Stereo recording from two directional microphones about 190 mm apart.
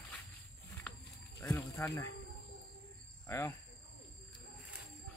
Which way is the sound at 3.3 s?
15° left (ahead or behind).